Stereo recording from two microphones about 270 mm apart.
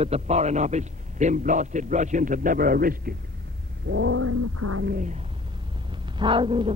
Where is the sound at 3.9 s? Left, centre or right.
Right.